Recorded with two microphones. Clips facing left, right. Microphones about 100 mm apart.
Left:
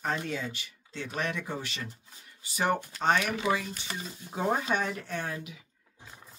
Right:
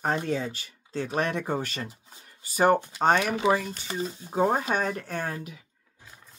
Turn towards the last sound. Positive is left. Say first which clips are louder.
# right 3 dB
turn(degrees=-45)  # may be behind; listen again after turning